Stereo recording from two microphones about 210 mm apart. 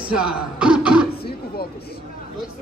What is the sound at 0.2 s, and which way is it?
Speech, 5° right (ahead or behind).